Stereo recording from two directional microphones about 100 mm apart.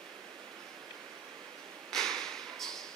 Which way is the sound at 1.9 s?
5° left (ahead or behind).